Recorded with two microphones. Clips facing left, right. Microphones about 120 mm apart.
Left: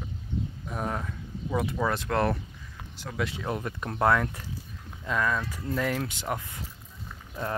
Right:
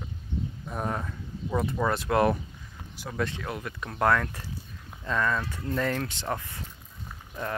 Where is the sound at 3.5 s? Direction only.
30° left (ahead or behind).